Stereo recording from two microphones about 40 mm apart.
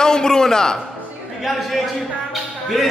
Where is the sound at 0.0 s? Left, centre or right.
Centre.